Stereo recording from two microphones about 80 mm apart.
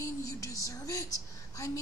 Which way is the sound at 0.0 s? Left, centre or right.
Left.